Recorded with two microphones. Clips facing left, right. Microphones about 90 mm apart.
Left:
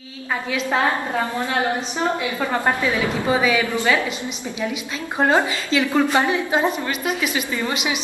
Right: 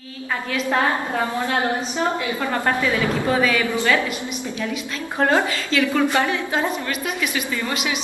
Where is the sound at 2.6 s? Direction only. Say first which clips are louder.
Right 1 dB; 15° left (ahead or behind).